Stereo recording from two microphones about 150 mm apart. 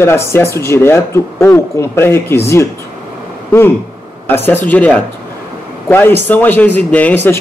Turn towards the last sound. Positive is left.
turn(degrees=15)  # may be behind; listen again after turning